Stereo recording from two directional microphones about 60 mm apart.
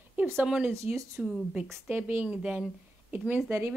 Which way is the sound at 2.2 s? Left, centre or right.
Centre.